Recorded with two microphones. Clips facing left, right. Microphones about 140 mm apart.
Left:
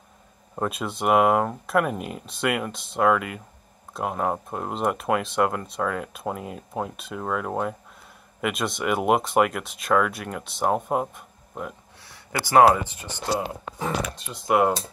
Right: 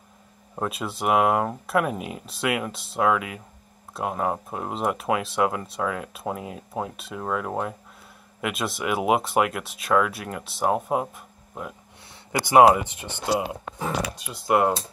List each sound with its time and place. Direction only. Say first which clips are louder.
0.6 s speech: left 1 dB; centre (ahead or behind)
12.0 s a sound: right 2 dB; 20° right (ahead or behind)
12.9 s speech: right 2 dB; 20° right (ahead or behind)
13.7 s speech: left 1 dB; 5° right (ahead or behind)